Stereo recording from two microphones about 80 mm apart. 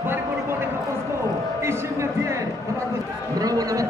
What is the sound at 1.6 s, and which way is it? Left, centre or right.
Speech, right.